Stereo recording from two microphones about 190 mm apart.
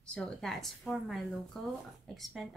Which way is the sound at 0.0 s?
5° left (ahead or behind).